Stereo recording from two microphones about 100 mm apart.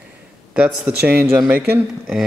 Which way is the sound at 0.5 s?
15° right (ahead or behind).